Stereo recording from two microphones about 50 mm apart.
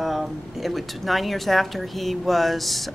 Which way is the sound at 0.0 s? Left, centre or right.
Centre.